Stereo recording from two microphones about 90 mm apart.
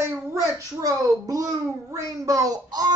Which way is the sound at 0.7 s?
40° right (ahead or behind).